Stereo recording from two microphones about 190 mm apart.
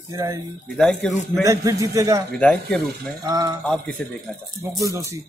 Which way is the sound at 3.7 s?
5° left (ahead or behind).